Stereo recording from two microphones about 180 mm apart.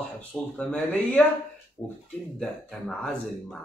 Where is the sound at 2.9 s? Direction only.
5° left (ahead or behind).